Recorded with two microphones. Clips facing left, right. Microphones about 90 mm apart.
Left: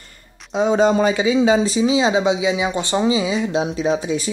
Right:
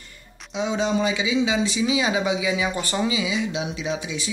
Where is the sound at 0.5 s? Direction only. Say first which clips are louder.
Left 8 dB; 45° left (ahead or behind).